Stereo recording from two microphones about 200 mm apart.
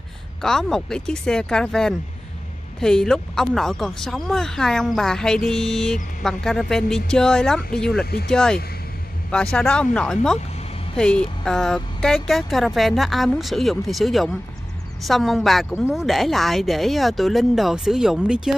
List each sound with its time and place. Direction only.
0.4 s speech: 5° left (ahead or behind)